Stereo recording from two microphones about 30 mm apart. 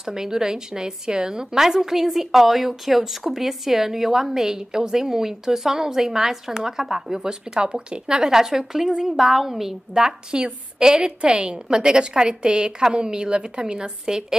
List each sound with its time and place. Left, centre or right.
0.0 s a woman's voice: centre
7.6 s a woman's voice: right; by 10.0 s centre
10.0 s a woman's voice: right